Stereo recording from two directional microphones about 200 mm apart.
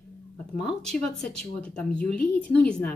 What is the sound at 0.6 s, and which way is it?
Speech, centre (ahead or behind).